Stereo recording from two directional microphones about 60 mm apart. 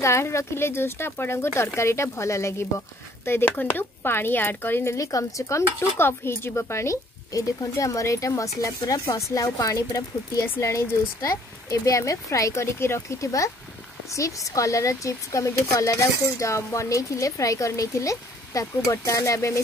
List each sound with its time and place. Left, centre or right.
0.0 s speech: left
3.3 s speech: left
4.9 s speech: left
5.9 s speech: left
11.1 s speech: left
13.2 s speech: left